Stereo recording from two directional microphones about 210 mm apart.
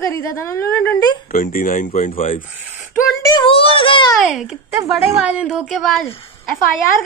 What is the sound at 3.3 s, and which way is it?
Speech, 25° left (ahead or behind).